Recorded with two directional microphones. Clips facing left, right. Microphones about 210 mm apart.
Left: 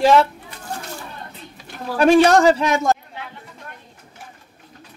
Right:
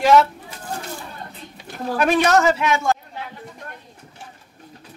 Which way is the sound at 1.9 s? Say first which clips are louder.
Left 5 dB; 30° left (ahead or behind).